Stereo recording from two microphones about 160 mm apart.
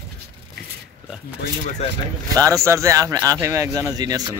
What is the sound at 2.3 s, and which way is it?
Speech, 20° right (ahead or behind).